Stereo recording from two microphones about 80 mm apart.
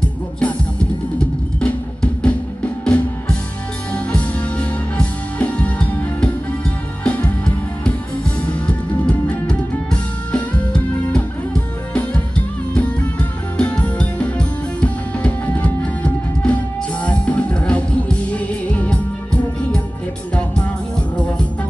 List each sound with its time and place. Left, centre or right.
0.4 s music: centre